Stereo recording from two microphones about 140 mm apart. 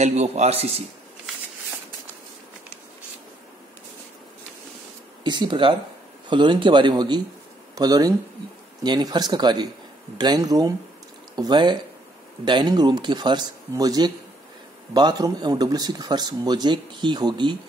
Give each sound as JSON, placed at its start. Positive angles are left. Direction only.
{"t": 0.0, "sound": "speech", "side_deg": -50}
{"t": 5.2, "sound": "speech", "side_deg": -35}